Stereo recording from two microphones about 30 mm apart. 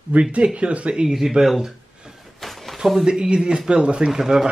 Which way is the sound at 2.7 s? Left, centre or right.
Centre.